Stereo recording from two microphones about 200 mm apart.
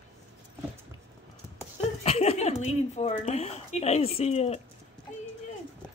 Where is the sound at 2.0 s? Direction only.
30° left (ahead or behind).